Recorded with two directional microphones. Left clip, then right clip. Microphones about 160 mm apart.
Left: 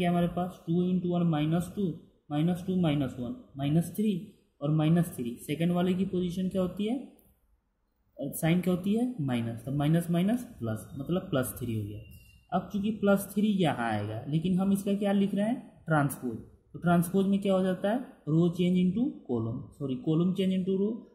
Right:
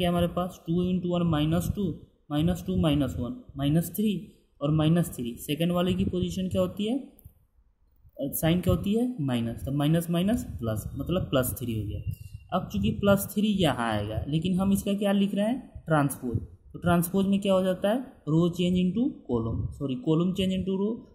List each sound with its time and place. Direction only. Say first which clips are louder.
0.0 s speech: right 3 dB; 30° right (ahead or behind)
8.2 s speech: right 3 dB; 25° right (ahead or behind)